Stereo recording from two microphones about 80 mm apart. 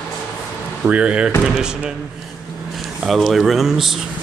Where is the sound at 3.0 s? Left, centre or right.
Centre.